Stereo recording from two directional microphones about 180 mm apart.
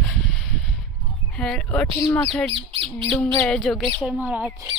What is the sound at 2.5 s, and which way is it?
Speech, 30° right (ahead or behind).